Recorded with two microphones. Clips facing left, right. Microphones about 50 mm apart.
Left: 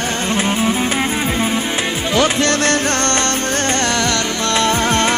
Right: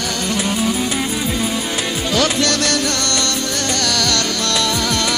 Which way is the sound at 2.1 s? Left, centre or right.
Left.